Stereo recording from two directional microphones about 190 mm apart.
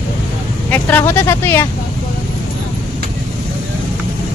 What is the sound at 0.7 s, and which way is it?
Speech, 10° left (ahead or behind).